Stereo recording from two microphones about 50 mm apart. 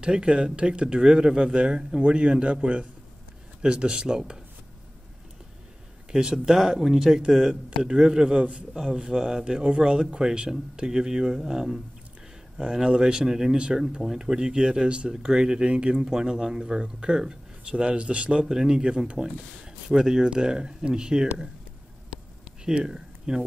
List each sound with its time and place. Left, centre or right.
0.0 s speech: centre
6.1 s speech: centre
22.7 s speech: centre